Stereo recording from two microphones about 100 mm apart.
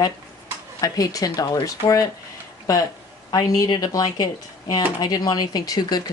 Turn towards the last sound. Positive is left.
turn(degrees=40)  # may be behind; listen again after turning